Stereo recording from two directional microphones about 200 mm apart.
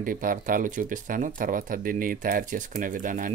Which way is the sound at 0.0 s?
40° right (ahead or behind).